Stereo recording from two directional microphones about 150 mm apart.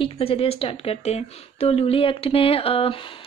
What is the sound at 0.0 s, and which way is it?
Speech, 40° left (ahead or behind).